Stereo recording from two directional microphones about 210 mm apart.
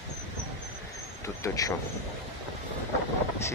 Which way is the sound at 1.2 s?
15° left (ahead or behind).